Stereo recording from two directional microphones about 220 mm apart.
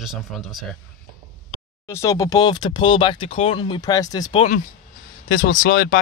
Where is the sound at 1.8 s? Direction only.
15° left (ahead or behind).